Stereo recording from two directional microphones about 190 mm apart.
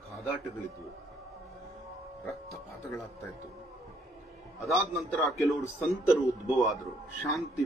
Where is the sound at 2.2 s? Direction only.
15° left (ahead or behind).